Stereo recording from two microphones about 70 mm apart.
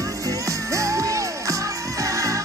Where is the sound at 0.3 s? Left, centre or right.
Right.